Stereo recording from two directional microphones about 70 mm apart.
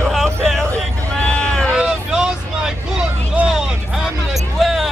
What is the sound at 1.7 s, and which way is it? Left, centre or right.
Vehicle, centre.